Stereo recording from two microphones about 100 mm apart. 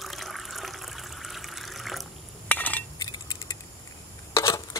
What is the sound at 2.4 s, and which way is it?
Cutlery, 15° left (ahead or behind).